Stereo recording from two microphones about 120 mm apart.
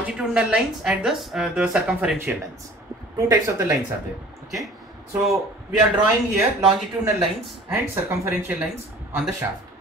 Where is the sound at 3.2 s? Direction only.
25° right (ahead or behind).